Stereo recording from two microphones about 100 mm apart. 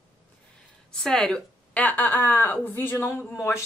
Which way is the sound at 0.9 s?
5° left (ahead or behind).